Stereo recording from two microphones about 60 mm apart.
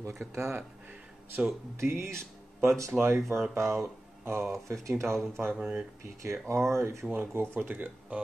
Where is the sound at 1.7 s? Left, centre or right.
Right.